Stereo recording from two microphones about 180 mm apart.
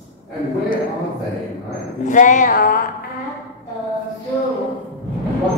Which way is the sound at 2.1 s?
45° left (ahead or behind).